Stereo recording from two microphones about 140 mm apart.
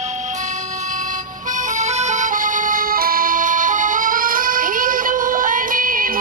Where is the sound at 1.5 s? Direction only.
65° right (ahead or behind).